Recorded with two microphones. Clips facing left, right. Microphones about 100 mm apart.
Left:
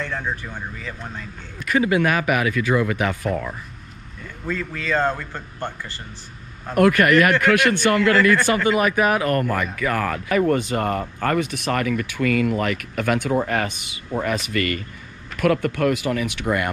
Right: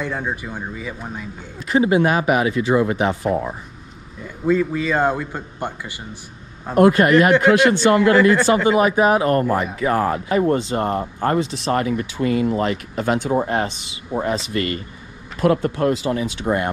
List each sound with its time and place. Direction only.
0.0 s a man's voice: 15° right (ahead or behind)
1.7 s a man's voice: 25° right (ahead or behind)
4.2 s a man's voice: 15° right (ahead or behind)
6.7 s a man's voice: 25° right (ahead or behind)